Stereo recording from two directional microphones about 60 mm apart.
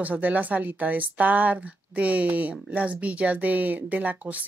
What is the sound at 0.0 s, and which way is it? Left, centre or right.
Speech, right.